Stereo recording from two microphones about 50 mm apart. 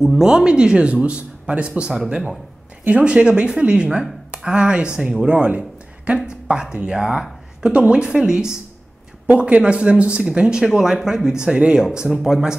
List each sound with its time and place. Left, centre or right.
0.2 s speech: centre
5.2 s a sound: right
6.2 s speech: centre
9.3 s speech: right